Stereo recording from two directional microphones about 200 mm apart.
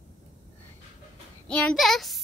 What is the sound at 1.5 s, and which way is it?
Speech, 5° left (ahead or behind).